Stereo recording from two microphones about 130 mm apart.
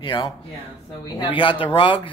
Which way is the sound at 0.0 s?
35° left (ahead or behind).